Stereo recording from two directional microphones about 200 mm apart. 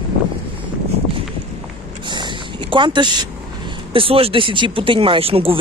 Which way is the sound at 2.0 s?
25° right (ahead or behind).